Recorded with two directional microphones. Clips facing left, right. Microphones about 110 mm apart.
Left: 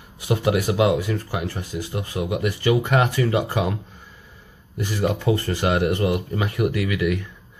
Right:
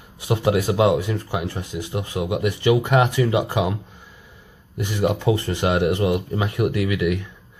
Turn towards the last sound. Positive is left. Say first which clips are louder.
# right 1 dB
turn(degrees=-20)  # may be behind; listen again after turning